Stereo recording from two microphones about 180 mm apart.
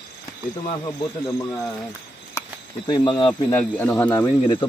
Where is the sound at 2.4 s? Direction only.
25° left (ahead or behind).